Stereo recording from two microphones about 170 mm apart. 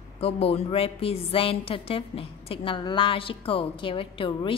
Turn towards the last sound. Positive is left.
turn(degrees=30)  # may be behind; listen again after turning